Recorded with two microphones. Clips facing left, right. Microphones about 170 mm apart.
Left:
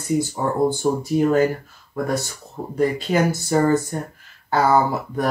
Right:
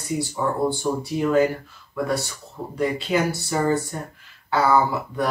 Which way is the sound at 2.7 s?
45° left (ahead or behind).